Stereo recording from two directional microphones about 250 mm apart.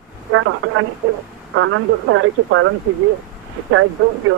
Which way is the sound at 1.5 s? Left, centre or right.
Right.